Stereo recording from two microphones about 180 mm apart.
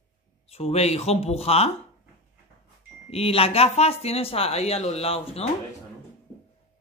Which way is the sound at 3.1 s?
35° left (ahead or behind).